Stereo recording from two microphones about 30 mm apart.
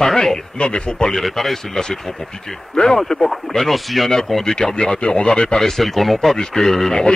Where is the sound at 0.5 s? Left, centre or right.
Left.